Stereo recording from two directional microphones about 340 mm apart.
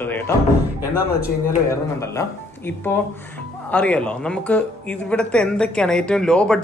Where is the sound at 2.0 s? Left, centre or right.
Centre.